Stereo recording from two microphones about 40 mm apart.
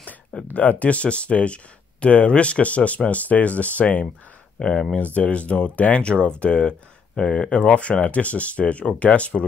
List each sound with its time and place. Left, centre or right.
0.5 s speech: left
4.6 s speech: left
4.9 s speech: left